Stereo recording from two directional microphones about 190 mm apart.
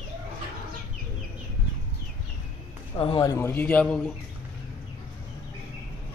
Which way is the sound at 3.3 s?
10° left (ahead or behind).